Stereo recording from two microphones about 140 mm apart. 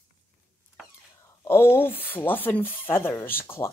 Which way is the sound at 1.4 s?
15° left (ahead or behind).